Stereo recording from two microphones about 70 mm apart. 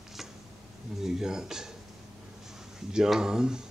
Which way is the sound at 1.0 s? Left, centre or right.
Centre.